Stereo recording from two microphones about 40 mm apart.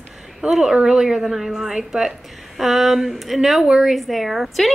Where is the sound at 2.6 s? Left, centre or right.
Centre.